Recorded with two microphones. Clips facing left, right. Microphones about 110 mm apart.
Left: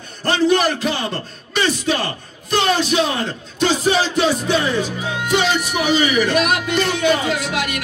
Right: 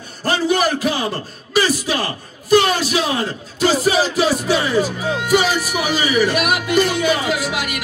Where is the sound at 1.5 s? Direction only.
5° right (ahead or behind).